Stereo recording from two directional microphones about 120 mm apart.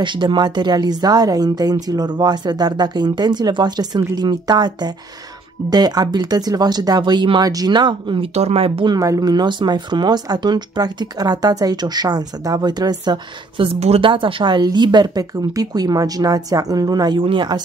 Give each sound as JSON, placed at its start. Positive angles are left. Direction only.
{"t": 0.0, "sound": "speech", "side_deg": -40}
{"t": 8.4, "sound": "speech", "side_deg": -60}
{"t": 8.9, "sound": "speech", "side_deg": -30}
{"t": 13.7, "sound": "speech", "side_deg": -55}